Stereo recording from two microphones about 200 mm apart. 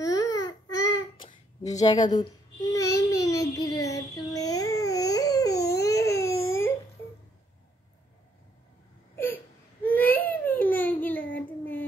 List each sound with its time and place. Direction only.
0.0 s baby cry: 15° left (ahead or behind)
0.4 s a sound: 20° left (ahead or behind)
2.7 s child singing: 15° left (ahead or behind)
5.8 s baby cry: 15° left (ahead or behind)
9.8 s baby cry: 10° left (ahead or behind)
10.3 s a sound: 10° left (ahead or behind)
11.3 s child singing: 10° left (ahead or behind)